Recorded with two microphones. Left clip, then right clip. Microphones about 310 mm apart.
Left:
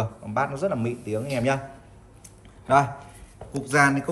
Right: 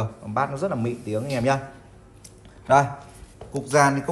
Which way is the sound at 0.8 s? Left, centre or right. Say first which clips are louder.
Right 1 dB; right.